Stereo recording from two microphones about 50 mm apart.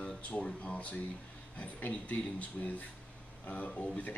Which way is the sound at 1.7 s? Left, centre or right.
Left.